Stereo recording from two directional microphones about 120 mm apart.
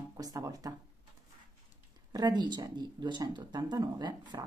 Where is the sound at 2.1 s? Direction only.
35° right (ahead or behind).